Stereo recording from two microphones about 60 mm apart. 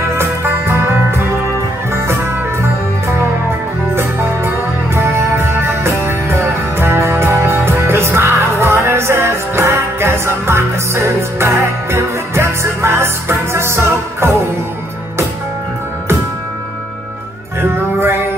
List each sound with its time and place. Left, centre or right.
0.2 s music: right
3.9 s music: right
17.6 s music: right